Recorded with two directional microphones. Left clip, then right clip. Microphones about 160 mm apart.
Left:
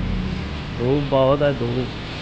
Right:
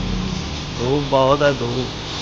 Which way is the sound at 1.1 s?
20° left (ahead or behind).